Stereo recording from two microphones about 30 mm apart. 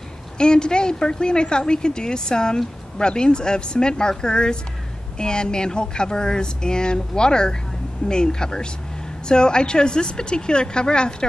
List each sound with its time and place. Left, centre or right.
0.4 s speech: left